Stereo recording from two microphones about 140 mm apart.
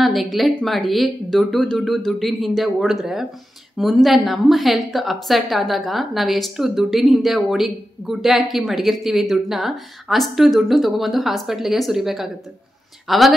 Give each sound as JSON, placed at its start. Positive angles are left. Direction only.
{"t": 0.0, "sound": "a woman's voice", "side_deg": 0}